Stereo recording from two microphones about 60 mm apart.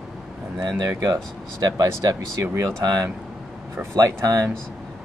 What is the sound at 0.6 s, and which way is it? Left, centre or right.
Speech, right.